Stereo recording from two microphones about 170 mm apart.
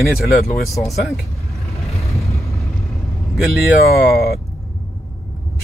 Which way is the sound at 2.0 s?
15° left (ahead or behind).